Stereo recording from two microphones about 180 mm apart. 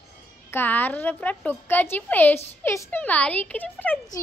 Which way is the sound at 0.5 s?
10° left (ahead or behind).